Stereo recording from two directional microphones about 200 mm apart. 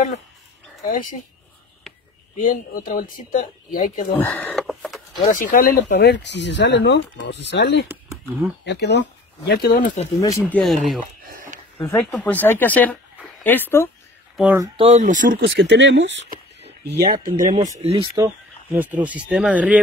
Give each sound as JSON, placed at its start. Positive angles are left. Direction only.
{"t": 2.3, "sound": "speech", "side_deg": 40}
{"t": 4.2, "sound": "speech", "side_deg": 5}
{"t": 5.3, "sound": "speech", "side_deg": 45}
{"t": 7.9, "sound": "speech", "side_deg": -10}
{"t": 8.6, "sound": "speech", "side_deg": 60}
{"t": 10.5, "sound": "speech", "side_deg": 0}
{"t": 11.8, "sound": "speech", "side_deg": 5}
{"t": 14.3, "sound": "speech", "side_deg": -10}
{"t": 14.8, "sound": "speech", "side_deg": -35}
{"t": 15.4, "sound": "speech", "side_deg": -60}
{"t": 16.6, "sound": "a sound", "side_deg": -55}
{"t": 17.4, "sound": "speech", "side_deg": -40}
{"t": 18.1, "sound": "speech", "side_deg": -15}